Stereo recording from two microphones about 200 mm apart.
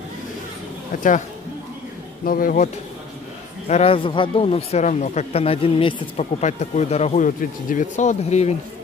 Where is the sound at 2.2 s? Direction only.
45° left (ahead or behind).